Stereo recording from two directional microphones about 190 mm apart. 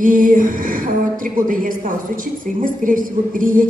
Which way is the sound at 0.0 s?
45° right (ahead or behind).